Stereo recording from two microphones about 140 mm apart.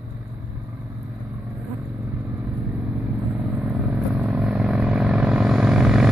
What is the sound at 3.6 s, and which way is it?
Vehicle, 5° right (ahead or behind).